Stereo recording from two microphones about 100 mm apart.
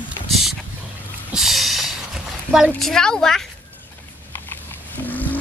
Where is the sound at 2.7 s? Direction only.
5° left (ahead or behind).